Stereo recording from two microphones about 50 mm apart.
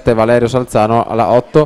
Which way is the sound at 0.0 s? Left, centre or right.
Centre.